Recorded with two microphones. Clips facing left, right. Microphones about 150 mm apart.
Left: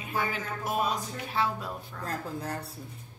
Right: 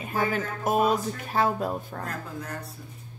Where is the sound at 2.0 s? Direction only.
30° left (ahead or behind).